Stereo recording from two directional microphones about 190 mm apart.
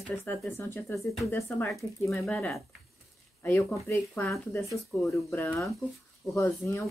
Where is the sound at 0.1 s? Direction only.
10° left (ahead or behind).